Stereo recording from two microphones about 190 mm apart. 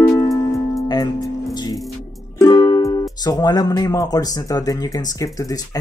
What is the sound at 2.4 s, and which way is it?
Speech, 15° left (ahead or behind).